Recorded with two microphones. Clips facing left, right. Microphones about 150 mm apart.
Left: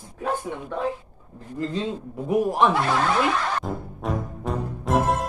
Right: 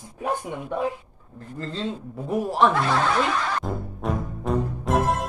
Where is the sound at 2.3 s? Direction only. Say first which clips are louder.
Left 1 dB; 15° left (ahead or behind).